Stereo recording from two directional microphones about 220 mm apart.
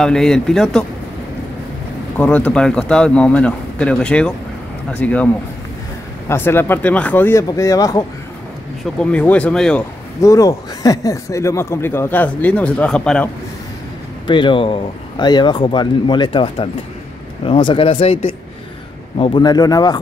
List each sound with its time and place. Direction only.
0.0 s speech: centre (ahead or behind)
2.1 s speech: 5° left (ahead or behind)
9.0 s speech: 5° left (ahead or behind)
14.2 s speech: 20° left (ahead or behind)